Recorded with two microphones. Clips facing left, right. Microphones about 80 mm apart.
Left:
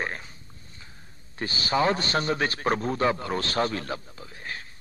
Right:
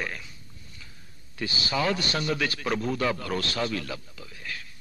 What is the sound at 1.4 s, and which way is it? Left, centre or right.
A man's voice, left.